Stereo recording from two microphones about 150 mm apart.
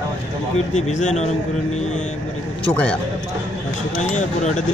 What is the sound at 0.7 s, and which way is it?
Speech, 50° left (ahead or behind).